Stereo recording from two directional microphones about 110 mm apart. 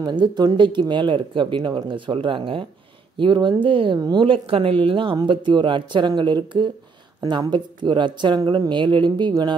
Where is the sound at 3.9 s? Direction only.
35° right (ahead or behind).